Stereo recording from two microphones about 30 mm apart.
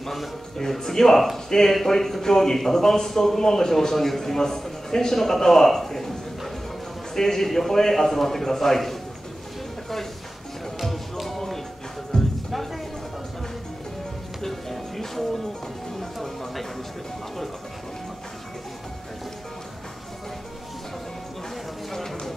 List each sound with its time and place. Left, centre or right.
0.0 s speech: centre
0.6 s speech: centre
7.2 s speech: centre
10.8 s music: centre
14.4 s music: centre
15.9 s a sound: centre